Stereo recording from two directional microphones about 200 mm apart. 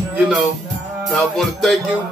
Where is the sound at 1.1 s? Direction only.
Centre (ahead or behind).